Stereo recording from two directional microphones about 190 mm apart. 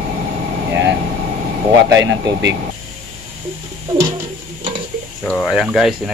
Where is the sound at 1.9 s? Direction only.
70° right (ahead or behind).